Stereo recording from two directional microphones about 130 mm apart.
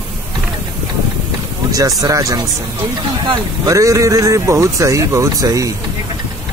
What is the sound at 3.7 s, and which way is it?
Speech, 25° right (ahead or behind).